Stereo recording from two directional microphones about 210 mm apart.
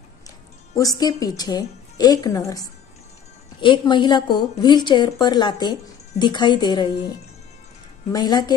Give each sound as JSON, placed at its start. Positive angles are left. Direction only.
{"t": 0.7, "sound": "a woman's voice", "side_deg": 15}
{"t": 8.1, "sound": "a woman's voice", "side_deg": 20}